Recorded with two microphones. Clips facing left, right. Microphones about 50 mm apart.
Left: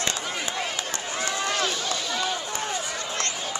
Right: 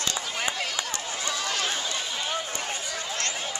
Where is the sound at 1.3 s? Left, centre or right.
Left.